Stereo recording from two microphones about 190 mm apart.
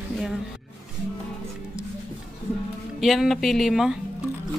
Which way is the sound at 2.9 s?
Centre (ahead or behind).